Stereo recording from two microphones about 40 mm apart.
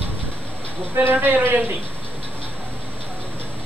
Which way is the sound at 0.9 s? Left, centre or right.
Right.